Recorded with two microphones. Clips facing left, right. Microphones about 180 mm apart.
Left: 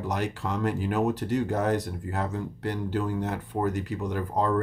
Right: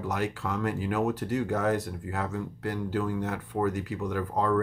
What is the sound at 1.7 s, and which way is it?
Speech, 35° left (ahead or behind).